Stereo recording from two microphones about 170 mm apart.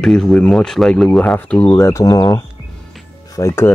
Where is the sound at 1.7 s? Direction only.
15° left (ahead or behind).